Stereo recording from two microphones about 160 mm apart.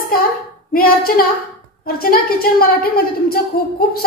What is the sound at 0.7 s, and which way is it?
A woman's voice, 65° left (ahead or behind).